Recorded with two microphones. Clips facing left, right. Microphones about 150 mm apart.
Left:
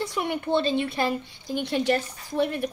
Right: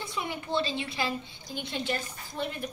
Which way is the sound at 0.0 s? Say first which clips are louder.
Left 8 dB; 75° left (ahead or behind).